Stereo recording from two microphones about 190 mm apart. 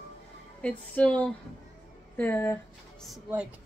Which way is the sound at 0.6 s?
5° left (ahead or behind).